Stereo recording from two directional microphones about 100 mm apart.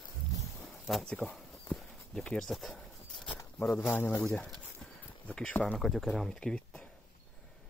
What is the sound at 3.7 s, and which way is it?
Speech, 20° left (ahead or behind).